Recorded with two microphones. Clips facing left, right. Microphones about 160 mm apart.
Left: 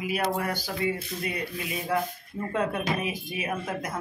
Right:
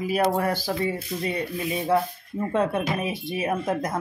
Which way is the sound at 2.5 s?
25° right (ahead or behind).